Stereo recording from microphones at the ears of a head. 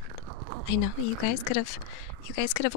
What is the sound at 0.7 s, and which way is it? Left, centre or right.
Speech, left.